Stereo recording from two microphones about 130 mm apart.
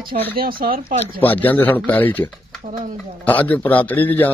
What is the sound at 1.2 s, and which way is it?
A man's voice, 15° left (ahead or behind).